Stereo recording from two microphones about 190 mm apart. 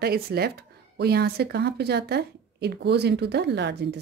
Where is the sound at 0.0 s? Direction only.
55° right (ahead or behind).